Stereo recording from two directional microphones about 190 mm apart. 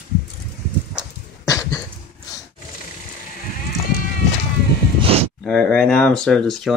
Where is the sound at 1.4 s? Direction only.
20° left (ahead or behind).